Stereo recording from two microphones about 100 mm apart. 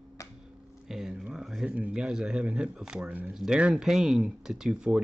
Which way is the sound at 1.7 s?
10° right (ahead or behind).